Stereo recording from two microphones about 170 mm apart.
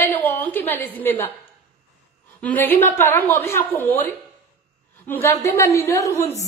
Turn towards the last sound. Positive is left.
turn(degrees=15)  # may be behind; listen again after turning